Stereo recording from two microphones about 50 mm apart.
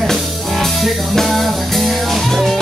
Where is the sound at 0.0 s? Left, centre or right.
Centre.